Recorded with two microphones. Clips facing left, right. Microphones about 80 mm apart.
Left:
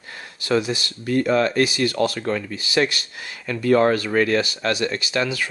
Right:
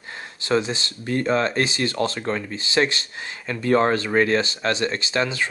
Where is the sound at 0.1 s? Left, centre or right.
Right.